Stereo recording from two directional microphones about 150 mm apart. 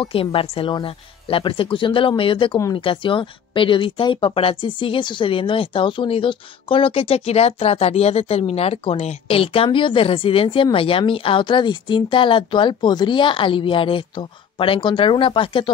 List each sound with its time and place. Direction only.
0.0 s speech: 35° left (ahead or behind)